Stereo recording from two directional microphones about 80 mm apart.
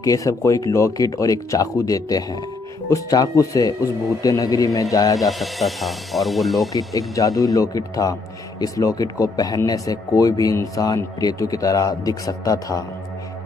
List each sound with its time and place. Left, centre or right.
0.0 s speech: left
5.2 s speech: centre
6.7 s speech: left